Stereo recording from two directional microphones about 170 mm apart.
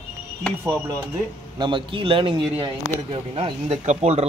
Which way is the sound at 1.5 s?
30° right (ahead or behind).